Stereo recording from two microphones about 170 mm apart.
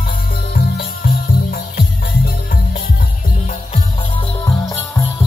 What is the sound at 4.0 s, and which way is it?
Jingle bell, 30° left (ahead or behind).